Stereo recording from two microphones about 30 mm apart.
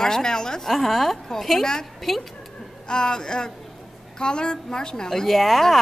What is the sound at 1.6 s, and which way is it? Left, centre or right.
Speech, centre.